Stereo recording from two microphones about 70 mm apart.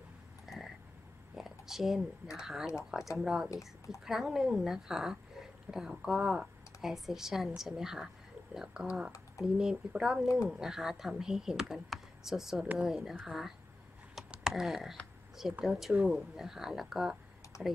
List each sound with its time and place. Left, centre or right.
0.5 s a sound: centre
2.3 s speech: centre
3.4 s speech: left
4.0 s speech: centre
17.5 s typing: left